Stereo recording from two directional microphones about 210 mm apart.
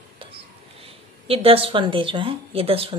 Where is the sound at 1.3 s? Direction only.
25° right (ahead or behind).